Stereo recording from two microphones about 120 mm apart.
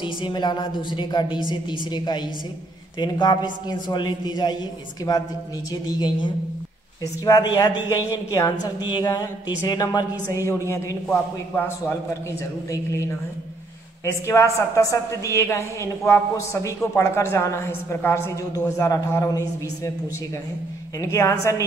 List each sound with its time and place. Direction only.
0.0 s a woman's voice: 40° left (ahead or behind)
11.1 s a man's voice: 15° left (ahead or behind)
14.0 s a woman's voice: 20° left (ahead or behind)
21.0 s a woman's voice: 25° left (ahead or behind)